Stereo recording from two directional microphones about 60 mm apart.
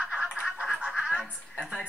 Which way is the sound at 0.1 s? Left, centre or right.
Centre.